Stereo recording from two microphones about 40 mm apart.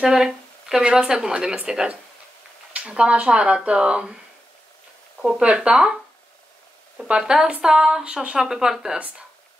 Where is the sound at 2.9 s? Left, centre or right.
Right.